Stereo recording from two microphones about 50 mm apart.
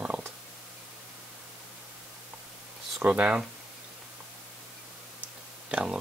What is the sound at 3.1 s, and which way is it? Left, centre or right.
Speech, centre.